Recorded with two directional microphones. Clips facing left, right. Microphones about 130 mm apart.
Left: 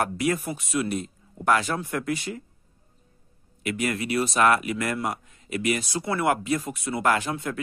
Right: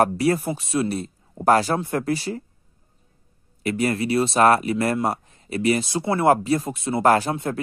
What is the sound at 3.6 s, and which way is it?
Speech, 35° right (ahead or behind).